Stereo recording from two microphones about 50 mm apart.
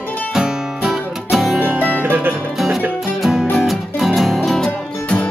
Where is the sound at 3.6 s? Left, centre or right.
Centre.